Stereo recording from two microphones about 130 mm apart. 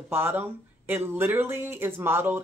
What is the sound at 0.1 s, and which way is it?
Speech, 15° right (ahead or behind).